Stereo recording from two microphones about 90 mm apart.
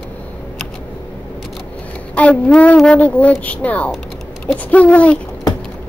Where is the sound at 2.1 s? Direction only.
15° left (ahead or behind).